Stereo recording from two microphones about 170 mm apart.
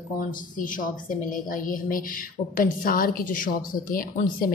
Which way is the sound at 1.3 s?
55° left (ahead or behind).